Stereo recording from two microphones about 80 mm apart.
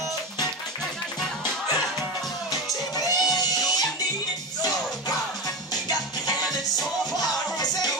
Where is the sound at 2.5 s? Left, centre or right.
Left.